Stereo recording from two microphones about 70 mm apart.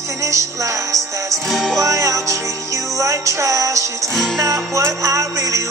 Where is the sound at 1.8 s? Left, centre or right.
Right.